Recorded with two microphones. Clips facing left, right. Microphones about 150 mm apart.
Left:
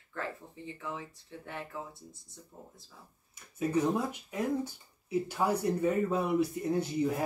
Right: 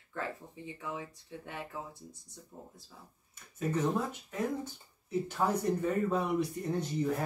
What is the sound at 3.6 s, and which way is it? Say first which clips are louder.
Speech: left 2 dB; 10° left (ahead or behind).